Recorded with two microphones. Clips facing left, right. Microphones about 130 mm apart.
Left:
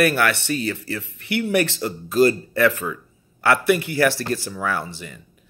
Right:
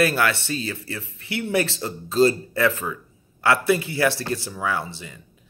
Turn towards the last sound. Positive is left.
turn(degrees=-20)  # may be behind; listen again after turning